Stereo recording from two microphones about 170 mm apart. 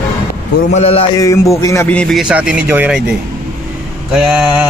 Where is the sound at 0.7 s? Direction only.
35° left (ahead or behind).